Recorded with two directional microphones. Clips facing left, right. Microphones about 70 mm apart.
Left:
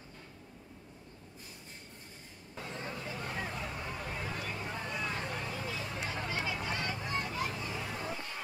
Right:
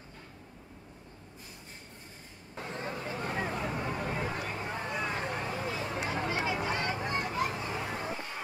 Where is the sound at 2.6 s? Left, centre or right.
Right.